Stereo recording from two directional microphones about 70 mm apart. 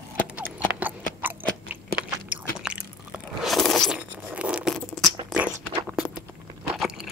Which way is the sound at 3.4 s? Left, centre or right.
Centre.